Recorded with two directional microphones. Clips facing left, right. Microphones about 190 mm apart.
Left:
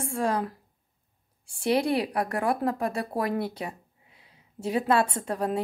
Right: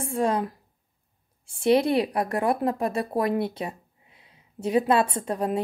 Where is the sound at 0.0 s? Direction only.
20° right (ahead or behind).